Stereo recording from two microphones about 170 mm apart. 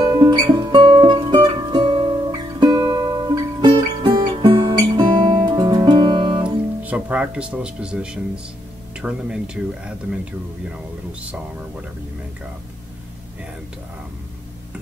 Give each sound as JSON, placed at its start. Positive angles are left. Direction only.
{"t": 0.1, "sound": "music", "side_deg": -25}
{"t": 6.4, "sound": "music", "side_deg": -10}
{"t": 9.0, "sound": "speech", "side_deg": -5}